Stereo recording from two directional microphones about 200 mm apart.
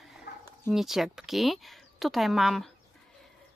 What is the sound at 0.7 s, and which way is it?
Speech, centre (ahead or behind).